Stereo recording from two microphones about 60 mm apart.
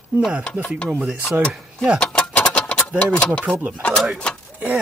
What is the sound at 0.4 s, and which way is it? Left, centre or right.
Speech, left.